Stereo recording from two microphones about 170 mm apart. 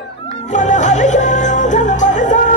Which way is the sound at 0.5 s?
45° left (ahead or behind).